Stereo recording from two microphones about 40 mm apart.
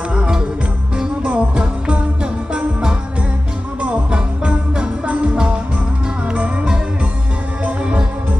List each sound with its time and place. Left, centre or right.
0.1 s music: right
2.5 s music: right